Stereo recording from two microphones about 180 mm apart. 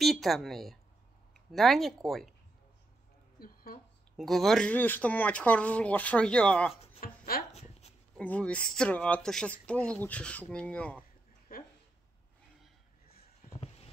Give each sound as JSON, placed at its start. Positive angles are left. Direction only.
{"t": 0.0, "sound": "speech", "side_deg": 0}
{"t": 3.3, "sound": "a sound", "side_deg": 55}
{"t": 4.2, "sound": "speech", "side_deg": 0}
{"t": 6.7, "sound": "music", "side_deg": 35}
{"t": 7.0, "sound": "chopping", "side_deg": 55}
{"t": 8.2, "sound": "speech", "side_deg": 5}
{"t": 13.5, "sound": "a sound", "side_deg": 30}